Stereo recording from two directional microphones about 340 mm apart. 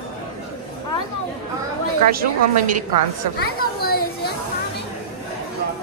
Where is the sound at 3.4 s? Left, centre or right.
Left.